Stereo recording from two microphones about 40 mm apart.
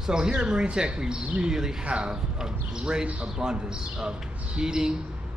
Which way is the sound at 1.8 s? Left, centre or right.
Right.